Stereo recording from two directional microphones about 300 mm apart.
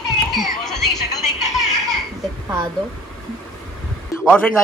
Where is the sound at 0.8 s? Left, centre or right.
Left.